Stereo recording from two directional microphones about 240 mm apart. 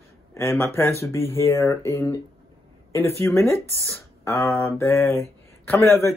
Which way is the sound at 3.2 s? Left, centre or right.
Centre.